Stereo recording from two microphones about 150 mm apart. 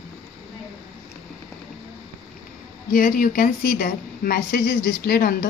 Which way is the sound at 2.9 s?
70° left (ahead or behind).